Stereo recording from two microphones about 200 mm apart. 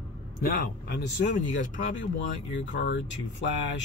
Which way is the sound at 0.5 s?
55° left (ahead or behind).